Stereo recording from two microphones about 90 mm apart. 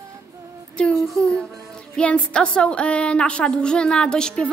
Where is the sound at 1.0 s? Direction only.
5° left (ahead or behind).